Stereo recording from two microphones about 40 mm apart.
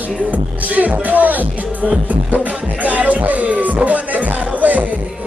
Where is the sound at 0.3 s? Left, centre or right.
Right.